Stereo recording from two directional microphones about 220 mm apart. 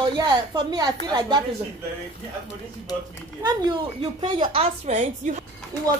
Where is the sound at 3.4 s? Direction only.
20° right (ahead or behind).